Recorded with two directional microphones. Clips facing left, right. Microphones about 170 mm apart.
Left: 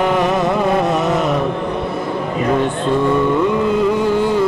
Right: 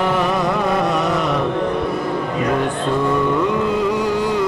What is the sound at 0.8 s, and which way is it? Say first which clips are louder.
Chant: left 2 dB; 25° left (ahead or behind).